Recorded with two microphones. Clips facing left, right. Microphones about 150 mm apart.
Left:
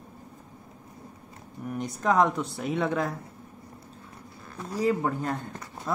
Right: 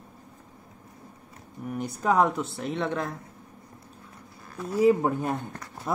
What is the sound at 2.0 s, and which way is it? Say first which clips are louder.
Speech: even; 10° right (ahead or behind).